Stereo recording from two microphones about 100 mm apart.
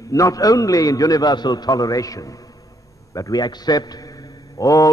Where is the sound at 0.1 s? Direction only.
35° left (ahead or behind).